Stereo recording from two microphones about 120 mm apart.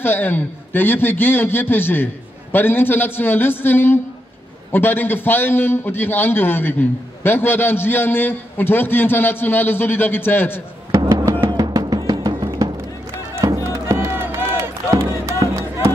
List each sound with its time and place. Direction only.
0.0 s a man's voice: 15° left (ahead or behind)
10.9 s music: 35° right (ahead or behind)